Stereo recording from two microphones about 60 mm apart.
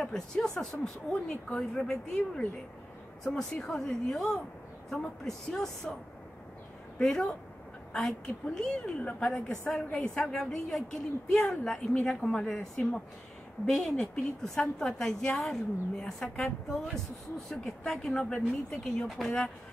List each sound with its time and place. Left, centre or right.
0.0 s a woman's voice: centre
7.0 s a woman's voice: centre
9.5 s a woman's voice: centre